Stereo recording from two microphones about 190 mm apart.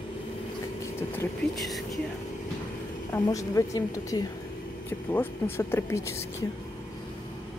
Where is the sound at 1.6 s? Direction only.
Centre (ahead or behind).